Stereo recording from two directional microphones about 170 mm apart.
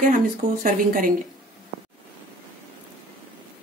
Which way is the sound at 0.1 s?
50° right (ahead or behind).